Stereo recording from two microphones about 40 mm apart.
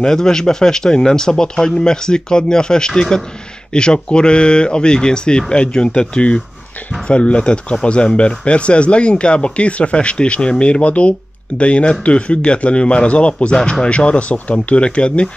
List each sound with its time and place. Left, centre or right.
0.0 s speech: centre